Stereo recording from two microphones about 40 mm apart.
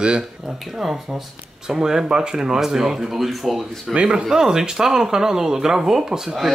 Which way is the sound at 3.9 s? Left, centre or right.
Right.